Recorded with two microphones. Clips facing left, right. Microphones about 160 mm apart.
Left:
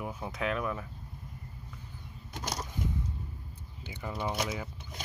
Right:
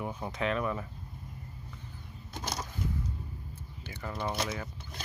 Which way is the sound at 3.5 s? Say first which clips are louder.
Left 2 dB; 15° left (ahead or behind).